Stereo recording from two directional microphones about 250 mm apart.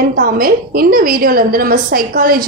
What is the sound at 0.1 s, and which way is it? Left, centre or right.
A woman's voice, right.